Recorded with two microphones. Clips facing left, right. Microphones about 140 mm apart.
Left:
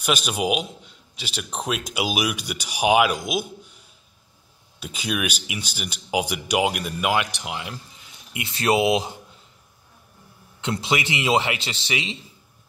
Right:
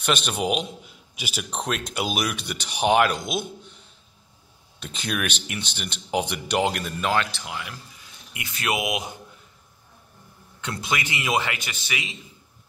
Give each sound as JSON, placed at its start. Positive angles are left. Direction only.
{"t": 0.0, "sound": "a man's voice", "side_deg": 5}
{"t": 0.8, "sound": "a sound", "side_deg": -10}
{"t": 1.4, "sound": "speech", "side_deg": 0}
{"t": 4.7, "sound": "a man's voice", "side_deg": 5}
{"t": 10.6, "sound": "a man's voice", "side_deg": 25}